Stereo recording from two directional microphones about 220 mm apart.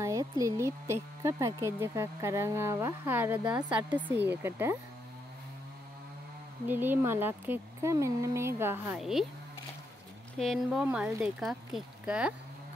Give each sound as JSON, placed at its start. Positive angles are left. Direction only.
{"t": 0.0, "sound": "speech", "side_deg": -15}
{"t": 6.7, "sound": "speech", "side_deg": -10}
{"t": 10.4, "sound": "speech", "side_deg": 0}